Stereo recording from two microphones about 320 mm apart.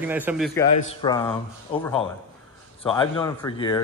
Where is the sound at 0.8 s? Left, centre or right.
Centre.